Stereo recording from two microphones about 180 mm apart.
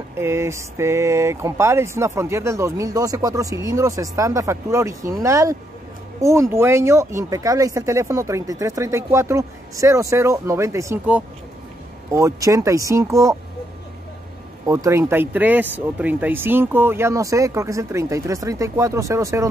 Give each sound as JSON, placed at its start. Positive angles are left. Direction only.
{"t": 0.2, "sound": "speech", "side_deg": -15}
{"t": 14.7, "sound": "speech", "side_deg": -15}